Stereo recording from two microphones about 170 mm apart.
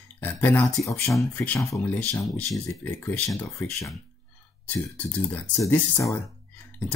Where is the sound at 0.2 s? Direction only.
10° left (ahead or behind).